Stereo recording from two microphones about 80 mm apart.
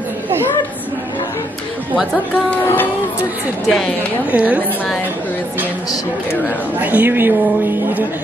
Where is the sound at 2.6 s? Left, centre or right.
Left.